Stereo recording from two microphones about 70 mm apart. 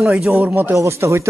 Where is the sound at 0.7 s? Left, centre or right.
Right.